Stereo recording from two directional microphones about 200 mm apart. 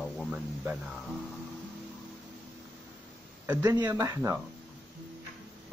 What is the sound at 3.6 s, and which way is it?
Speech, 20° right (ahead or behind).